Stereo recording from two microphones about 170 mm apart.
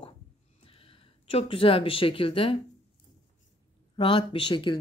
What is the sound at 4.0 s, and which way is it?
Speech, 30° left (ahead or behind).